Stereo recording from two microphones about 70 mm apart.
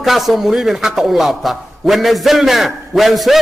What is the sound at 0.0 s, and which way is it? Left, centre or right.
A man's voice, centre.